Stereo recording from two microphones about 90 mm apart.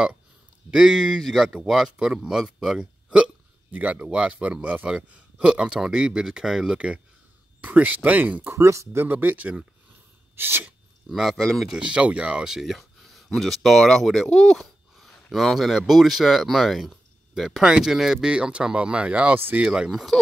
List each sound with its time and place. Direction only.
0.7 s speech: 5° right (ahead or behind)
8.5 s speech: 35° right (ahead or behind)
11.1 s speech: centre (ahead or behind)
11.8 s speech: 15° right (ahead or behind)
19.6 s speech: 5° right (ahead or behind)